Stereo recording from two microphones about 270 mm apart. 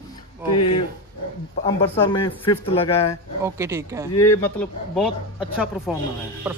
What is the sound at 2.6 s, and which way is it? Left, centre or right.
Speech, left.